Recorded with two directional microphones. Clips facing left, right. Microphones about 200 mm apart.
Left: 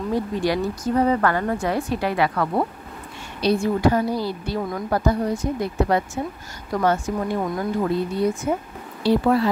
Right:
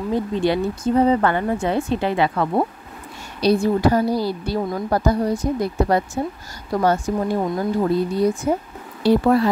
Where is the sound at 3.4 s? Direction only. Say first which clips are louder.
Right 2 dB; 35° right (ahead or behind).